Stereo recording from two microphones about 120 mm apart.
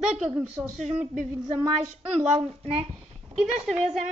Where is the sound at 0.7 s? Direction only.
75° right (ahead or behind).